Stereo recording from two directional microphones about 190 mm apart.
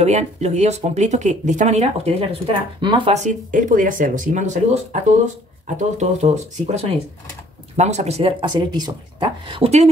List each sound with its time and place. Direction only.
0.0 s speech: 35° right (ahead or behind)
3.2 s speech: 40° right (ahead or behind)